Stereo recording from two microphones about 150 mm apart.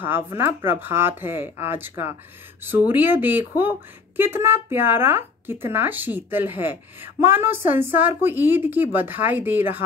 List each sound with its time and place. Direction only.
0.4 s speech: 15° right (ahead or behind)